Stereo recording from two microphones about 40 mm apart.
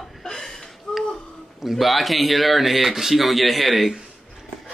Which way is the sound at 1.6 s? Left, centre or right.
Centre.